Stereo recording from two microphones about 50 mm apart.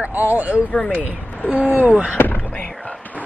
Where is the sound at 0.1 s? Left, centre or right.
Right.